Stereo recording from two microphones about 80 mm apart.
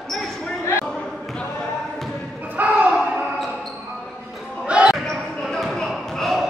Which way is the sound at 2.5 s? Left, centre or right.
Centre.